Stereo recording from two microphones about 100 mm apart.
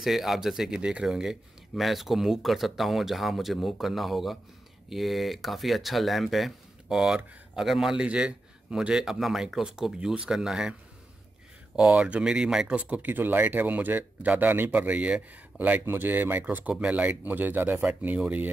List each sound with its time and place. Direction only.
0.0 s speech: centre (ahead or behind)